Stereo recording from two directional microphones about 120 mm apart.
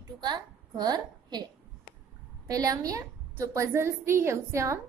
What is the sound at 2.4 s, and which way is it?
A woman's voice, 30° right (ahead or behind).